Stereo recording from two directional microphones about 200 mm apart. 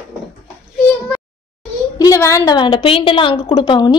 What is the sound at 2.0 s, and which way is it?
A woman's voice, 15° left (ahead or behind).